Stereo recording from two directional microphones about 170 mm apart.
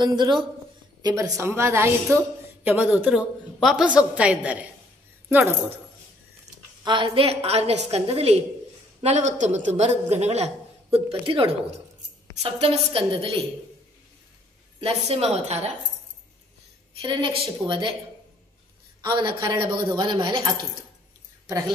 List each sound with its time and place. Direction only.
0.0 s a woman's voice: 25° right (ahead or behind); by 4.6 s 5° right (ahead or behind)
6.8 s a man's voice: 30° right (ahead or behind)
14.8 s a man's voice: 35° right (ahead or behind)
17.0 s speech: 30° right (ahead or behind)
18.9 s speech: 25° right (ahead or behind)